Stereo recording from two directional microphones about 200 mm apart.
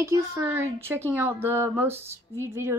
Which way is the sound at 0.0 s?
15° right (ahead or behind).